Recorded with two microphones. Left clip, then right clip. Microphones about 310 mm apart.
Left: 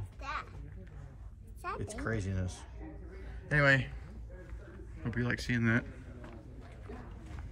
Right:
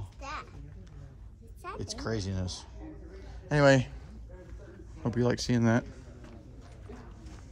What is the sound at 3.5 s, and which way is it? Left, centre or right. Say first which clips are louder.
Speech: right 4 dB; centre.